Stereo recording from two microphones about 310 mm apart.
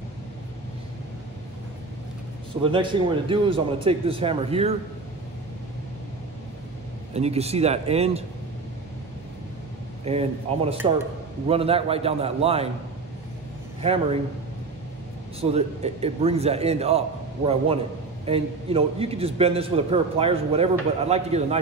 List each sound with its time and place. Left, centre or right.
2.6 s a man's voice: centre
7.2 s a man's voice: centre
10.0 s a man's voice: centre
13.7 s a man's voice: centre
15.4 s a man's voice: centre
18.2 s a man's voice: centre